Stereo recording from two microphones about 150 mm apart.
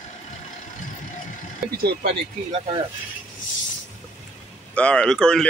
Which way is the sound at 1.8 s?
90° right.